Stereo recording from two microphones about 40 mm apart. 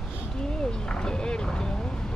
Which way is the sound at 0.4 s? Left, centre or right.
Centre.